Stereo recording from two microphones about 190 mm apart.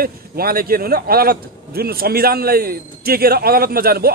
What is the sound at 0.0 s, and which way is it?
A man's voice, 50° right (ahead or behind).